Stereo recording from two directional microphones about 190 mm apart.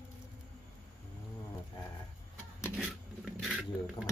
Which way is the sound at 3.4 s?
5° right (ahead or behind).